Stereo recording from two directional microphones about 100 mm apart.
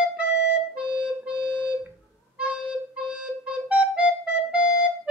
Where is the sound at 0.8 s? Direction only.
15° right (ahead or behind).